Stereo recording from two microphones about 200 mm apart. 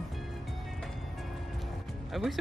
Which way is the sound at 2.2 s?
Centre (ahead or behind).